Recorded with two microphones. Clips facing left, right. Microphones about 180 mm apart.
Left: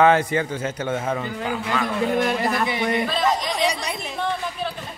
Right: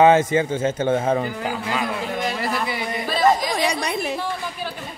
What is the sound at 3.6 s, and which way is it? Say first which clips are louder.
Speech: right 3 dB; 60° right (ahead or behind).